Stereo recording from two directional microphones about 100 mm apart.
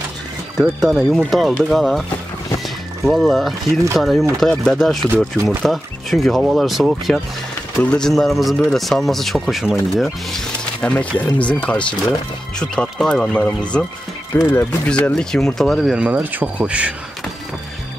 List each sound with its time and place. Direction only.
0.6 s speech: centre (ahead or behind)
3.1 s speech: centre (ahead or behind)
7.8 s speech: 10° left (ahead or behind)
8.1 s speech: centre (ahead or behind)
10.6 s speech: 10° left (ahead or behind)
15.9 s speech: 15° right (ahead or behind)